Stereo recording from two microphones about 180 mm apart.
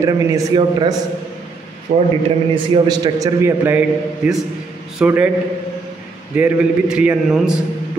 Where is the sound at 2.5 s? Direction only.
25° right (ahead or behind); by 5.3 s 5° right (ahead or behind).